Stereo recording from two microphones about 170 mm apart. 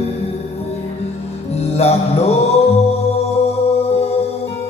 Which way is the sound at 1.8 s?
40° left (ahead or behind).